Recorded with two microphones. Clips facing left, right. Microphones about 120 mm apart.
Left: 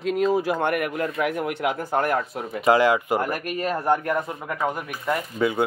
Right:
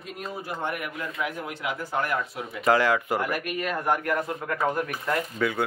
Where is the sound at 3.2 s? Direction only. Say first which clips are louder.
Left 3 dB; 40° left (ahead or behind).